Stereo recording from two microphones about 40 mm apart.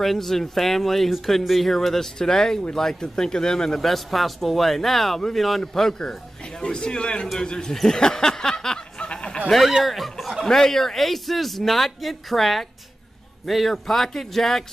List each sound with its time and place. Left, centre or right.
0.0 s a man's voice: centre
3.8 s a man's voice: centre
5.6 s a man's voice: centre
7.7 s a sound: centre; by 9.4 s left
9.5 s speech: centre
10.4 s a man's voice: centre